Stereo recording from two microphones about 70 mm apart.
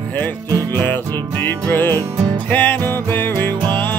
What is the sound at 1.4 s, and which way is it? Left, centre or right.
Music, left.